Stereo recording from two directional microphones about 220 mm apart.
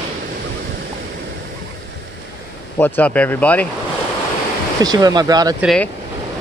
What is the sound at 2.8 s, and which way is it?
Speech, 5° left (ahead or behind).